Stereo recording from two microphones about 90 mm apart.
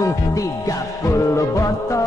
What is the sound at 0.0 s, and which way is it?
Music, 35° left (ahead or behind).